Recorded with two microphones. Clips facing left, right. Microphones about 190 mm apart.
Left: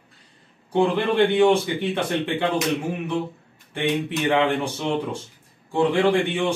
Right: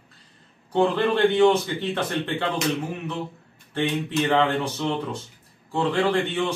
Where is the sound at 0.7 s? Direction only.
10° left (ahead or behind).